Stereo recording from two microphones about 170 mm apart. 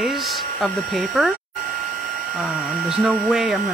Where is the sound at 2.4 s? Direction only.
5° right (ahead or behind).